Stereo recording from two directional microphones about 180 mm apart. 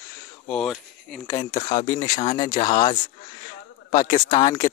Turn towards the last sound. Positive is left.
turn(degrees=20)  # may be behind; listen again after turning